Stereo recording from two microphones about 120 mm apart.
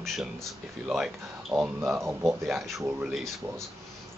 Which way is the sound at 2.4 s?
Centre (ahead or behind).